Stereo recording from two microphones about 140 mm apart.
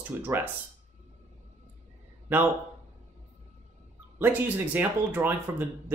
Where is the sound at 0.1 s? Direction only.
15° right (ahead or behind).